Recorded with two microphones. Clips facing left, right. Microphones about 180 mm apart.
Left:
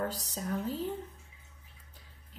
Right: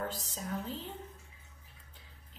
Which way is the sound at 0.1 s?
40° left (ahead or behind).